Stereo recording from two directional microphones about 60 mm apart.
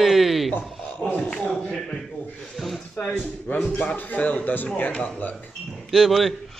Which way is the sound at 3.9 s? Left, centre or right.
Left.